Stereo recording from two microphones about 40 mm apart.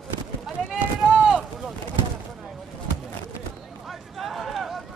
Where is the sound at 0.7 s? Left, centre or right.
Right.